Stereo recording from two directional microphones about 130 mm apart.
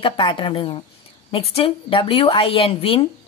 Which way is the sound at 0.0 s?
40° left (ahead or behind).